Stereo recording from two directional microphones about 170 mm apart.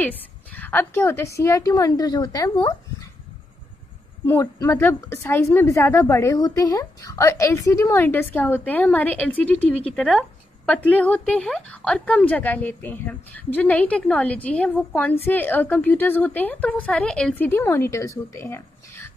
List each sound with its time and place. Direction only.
0.0 s a woman's voice: 10° left (ahead or behind)
4.3 s a woman's voice: 15° left (ahead or behind)